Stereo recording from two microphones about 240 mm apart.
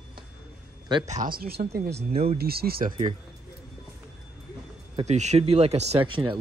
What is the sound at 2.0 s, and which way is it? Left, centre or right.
Speech, right.